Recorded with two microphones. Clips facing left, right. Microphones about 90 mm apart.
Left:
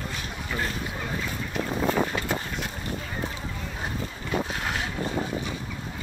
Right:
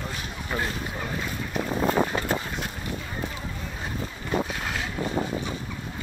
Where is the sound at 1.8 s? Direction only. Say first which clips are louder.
Right 2 dB; 35° right (ahead or behind).